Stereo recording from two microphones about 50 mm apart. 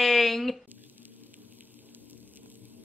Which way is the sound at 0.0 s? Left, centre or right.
Centre.